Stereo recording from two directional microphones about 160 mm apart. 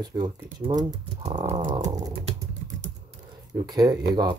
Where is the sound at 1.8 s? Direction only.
20° right (ahead or behind).